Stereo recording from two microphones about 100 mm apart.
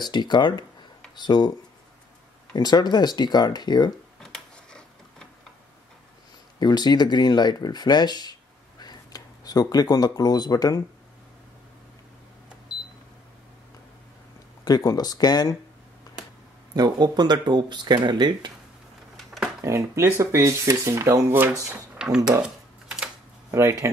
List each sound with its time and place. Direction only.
0.0 s speech: 45° left (ahead or behind)
2.5 s speech: 45° left (ahead or behind)
4.2 s a sound: 5° left (ahead or behind)
6.6 s speech: 45° left (ahead or behind)
14.8 s speech: 40° left (ahead or behind)
16.7 s speech: 40° right (ahead or behind)
19.1 s a sound: centre (ahead or behind)
19.6 s speech: 30° right (ahead or behind)
21.9 s speech: 5° right (ahead or behind)
23.5 s speech: 30° right (ahead or behind)